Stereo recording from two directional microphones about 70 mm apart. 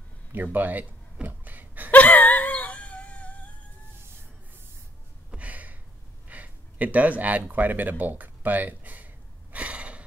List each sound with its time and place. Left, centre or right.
0.3 s speech: right
1.2 s gasp: right
1.9 s a sound: left
5.3 s a sound: right
6.2 s speech: right
8.0 s gasp: right